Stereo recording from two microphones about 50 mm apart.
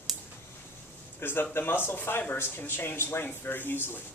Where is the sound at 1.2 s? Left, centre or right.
Left.